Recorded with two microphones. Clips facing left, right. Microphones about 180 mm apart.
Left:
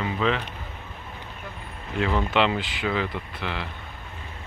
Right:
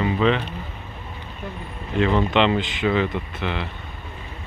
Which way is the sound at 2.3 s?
5° left (ahead or behind).